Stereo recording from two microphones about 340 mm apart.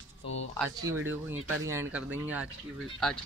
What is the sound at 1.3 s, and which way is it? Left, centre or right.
Speech, right.